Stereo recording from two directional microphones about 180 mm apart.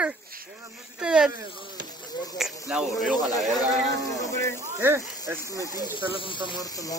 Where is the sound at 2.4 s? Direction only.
5° right (ahead or behind).